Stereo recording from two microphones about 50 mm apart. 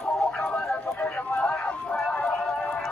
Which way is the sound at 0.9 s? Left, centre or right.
Left.